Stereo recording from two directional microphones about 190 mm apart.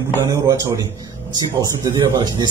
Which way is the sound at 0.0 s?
15° right (ahead or behind).